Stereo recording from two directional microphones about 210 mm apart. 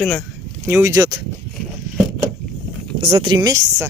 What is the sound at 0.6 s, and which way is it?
Speech, 10° right (ahead or behind).